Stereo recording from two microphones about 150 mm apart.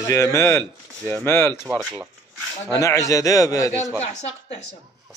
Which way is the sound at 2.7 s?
20° left (ahead or behind).